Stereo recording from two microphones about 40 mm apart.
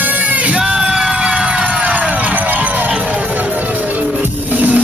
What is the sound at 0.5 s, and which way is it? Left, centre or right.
Music, right.